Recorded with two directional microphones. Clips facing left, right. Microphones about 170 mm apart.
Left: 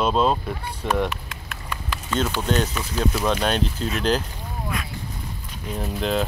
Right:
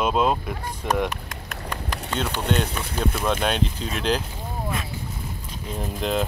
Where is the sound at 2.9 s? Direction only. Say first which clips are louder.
Left 2 dB; 5° left (ahead or behind).